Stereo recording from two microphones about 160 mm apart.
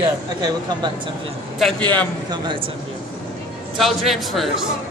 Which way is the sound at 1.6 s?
5° left (ahead or behind).